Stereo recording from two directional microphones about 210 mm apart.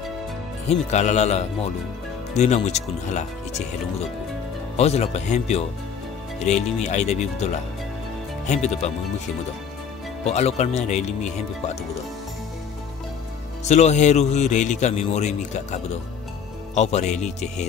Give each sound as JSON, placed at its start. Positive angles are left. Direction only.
{"t": 0.7, "sound": "a man's voice", "side_deg": 30}
{"t": 4.7, "sound": "a man's voice", "side_deg": 30}
{"t": 10.2, "sound": "a man's voice", "side_deg": 30}
{"t": 13.7, "sound": "a man's voice", "side_deg": 30}